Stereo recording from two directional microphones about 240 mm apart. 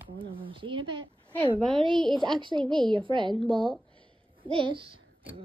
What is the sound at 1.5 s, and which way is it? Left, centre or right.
Speech, centre.